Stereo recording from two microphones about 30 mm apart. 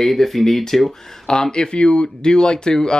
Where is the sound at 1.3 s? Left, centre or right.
Left.